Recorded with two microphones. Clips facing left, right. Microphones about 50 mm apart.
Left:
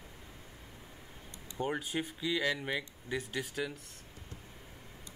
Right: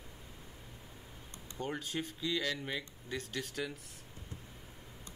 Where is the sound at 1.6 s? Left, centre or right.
Centre.